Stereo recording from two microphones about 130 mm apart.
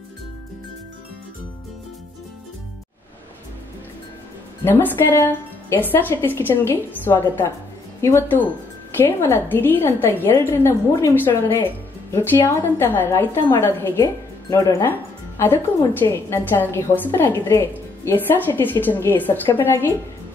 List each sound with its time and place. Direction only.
4.6 s a woman's voice: 15° left (ahead or behind)